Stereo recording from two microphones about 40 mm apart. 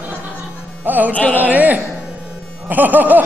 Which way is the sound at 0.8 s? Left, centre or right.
Right.